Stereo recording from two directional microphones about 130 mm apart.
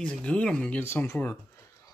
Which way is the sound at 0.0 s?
10° left (ahead or behind).